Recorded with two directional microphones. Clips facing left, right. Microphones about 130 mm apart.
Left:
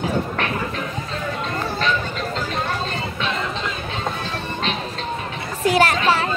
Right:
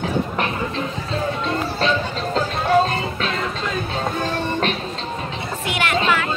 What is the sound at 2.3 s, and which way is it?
Music, 40° right (ahead or behind).